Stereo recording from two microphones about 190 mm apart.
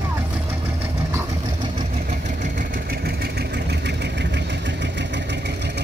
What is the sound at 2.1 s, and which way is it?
Vehicle, 40° right (ahead or behind).